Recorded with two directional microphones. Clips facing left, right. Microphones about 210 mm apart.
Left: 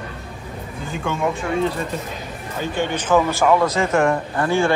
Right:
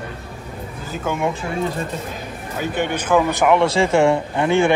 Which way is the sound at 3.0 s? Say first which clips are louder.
Even; 15° right (ahead or behind).